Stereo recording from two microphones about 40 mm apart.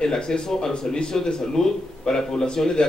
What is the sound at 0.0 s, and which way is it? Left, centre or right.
A man's voice, centre.